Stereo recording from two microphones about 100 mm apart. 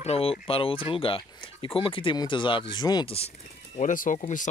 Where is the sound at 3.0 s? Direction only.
80° left.